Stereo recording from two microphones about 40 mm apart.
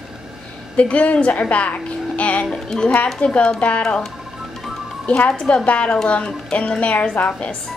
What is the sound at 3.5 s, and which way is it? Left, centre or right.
Speech, left.